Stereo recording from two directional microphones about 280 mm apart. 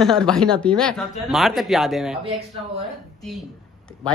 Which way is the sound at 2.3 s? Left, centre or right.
Right.